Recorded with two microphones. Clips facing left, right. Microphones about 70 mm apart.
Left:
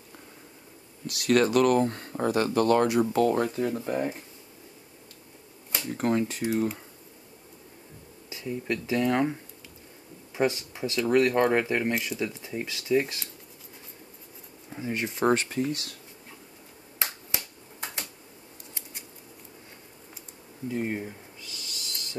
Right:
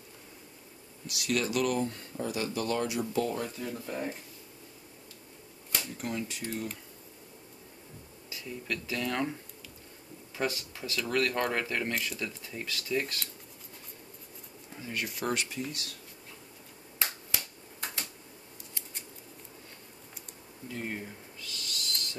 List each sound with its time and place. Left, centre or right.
1.0 s speech: left
5.9 s speech: left
8.3 s speech: left
14.7 s speech: left
17.0 s finger snapping: left
20.6 s owl: centre